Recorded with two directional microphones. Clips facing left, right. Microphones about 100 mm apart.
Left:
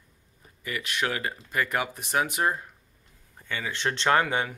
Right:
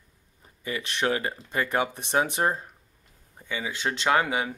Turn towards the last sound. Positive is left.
turn(degrees=-10)  # may be behind; listen again after turning